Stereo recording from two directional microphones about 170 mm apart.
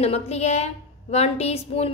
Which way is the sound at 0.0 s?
40° left (ahead or behind).